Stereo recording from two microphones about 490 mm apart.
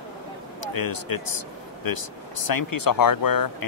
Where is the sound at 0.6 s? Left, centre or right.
Left.